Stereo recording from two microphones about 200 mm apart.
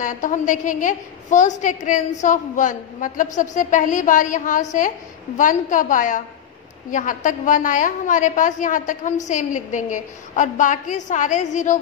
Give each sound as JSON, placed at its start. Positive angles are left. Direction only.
{"t": 0.0, "sound": "a woman's voice", "side_deg": 40}